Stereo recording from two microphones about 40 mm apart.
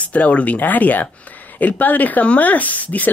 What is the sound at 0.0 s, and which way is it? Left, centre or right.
Speech, left.